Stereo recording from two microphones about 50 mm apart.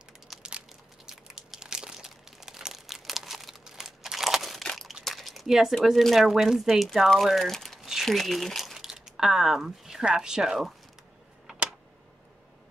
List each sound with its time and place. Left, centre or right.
0.4 s crushing: centre
1.1 s crumpling: centre
5.0 s a sound: centre
6.0 s speech: centre
8.7 s a sound: centre
10.0 s speech: centre